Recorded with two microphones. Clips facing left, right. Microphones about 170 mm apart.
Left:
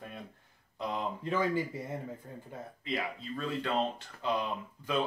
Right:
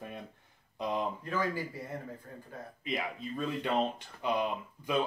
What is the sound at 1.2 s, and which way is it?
Speech, 25° left (ahead or behind).